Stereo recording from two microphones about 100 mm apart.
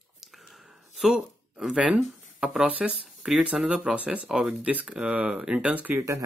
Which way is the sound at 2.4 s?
5° right (ahead or behind).